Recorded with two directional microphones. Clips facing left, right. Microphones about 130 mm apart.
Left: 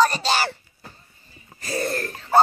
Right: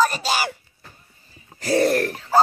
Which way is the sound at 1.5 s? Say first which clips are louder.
Right 8 dB; 75° right (ahead or behind).